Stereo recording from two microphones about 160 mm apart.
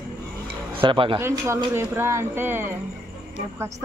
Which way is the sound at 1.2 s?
15° right (ahead or behind).